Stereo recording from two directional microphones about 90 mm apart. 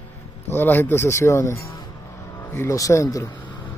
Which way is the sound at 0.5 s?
25° left (ahead or behind).